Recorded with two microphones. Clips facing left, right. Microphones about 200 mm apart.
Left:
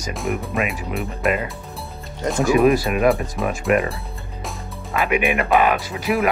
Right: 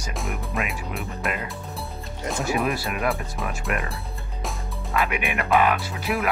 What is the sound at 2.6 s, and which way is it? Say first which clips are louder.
Speech: left 9 dB; 15° left (ahead or behind).